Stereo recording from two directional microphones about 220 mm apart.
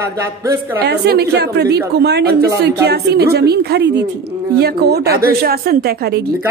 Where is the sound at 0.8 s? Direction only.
45° right (ahead or behind).